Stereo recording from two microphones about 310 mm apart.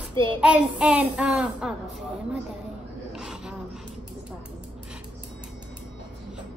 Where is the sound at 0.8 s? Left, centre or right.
Centre.